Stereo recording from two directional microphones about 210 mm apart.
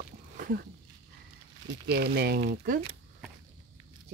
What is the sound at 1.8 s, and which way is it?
Speech, 50° right (ahead or behind).